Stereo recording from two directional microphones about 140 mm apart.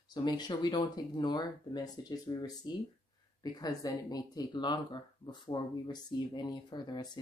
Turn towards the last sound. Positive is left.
turn(degrees=30)  # may be behind; listen again after turning